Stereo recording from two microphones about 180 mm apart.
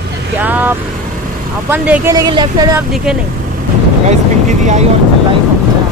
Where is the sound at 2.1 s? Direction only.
25° right (ahead or behind).